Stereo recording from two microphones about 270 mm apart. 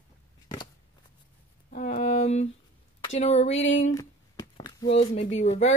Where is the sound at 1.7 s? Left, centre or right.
Left.